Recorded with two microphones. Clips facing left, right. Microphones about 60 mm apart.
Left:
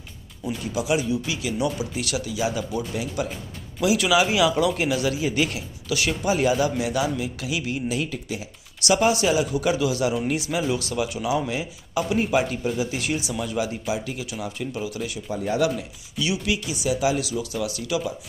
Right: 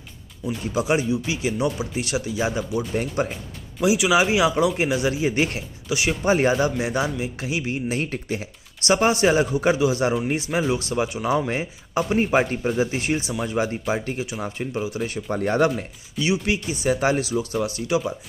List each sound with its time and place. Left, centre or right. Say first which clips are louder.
0.7 s speech: right 2 dB; right
3.8 s speech: right 1 dB; right
6.2 s speech: right 2 dB; right
8.0 s speech: right 2 dB; right
14.4 s speech: even; right
15.0 s speech: right 3 dB; right
16.2 s speech: right 3 dB; right